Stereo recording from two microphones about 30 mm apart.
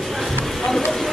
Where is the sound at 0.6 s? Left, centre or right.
Centre.